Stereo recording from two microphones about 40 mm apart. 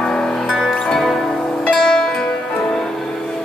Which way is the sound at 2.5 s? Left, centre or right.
Left.